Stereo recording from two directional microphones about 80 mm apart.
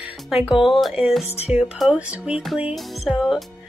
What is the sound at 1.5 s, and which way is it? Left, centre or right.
Music, centre.